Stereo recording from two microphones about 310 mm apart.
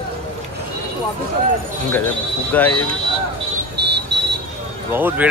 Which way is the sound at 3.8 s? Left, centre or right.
Right.